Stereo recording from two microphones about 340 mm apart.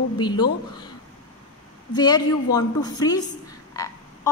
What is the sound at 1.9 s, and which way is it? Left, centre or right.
A woman's voice, centre.